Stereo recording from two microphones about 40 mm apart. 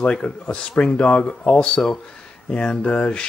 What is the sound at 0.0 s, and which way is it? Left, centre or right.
Speech, left.